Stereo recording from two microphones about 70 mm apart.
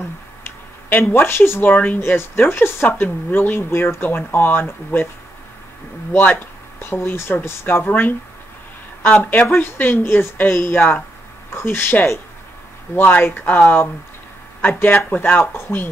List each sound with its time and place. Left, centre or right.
0.4 s a sound: left
1.1 s speech: left
6.1 s speech: left